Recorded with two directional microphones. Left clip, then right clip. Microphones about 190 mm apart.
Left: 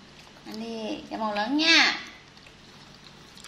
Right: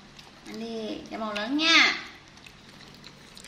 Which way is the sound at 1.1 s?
45° left (ahead or behind).